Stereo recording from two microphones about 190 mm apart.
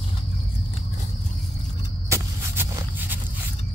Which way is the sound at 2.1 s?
10° right (ahead or behind).